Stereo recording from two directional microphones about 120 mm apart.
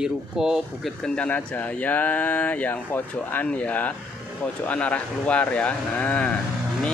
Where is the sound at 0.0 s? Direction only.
5° right (ahead or behind).